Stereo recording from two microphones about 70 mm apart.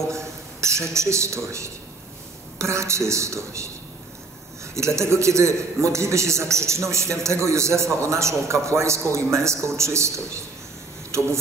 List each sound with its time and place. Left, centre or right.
0.1 s a man's voice: right
4.7 s a man's voice: right